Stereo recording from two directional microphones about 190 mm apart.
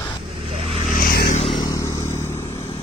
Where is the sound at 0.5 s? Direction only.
30° right (ahead or behind).